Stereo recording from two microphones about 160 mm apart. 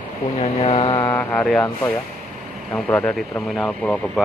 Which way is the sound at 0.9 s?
20° left (ahead or behind).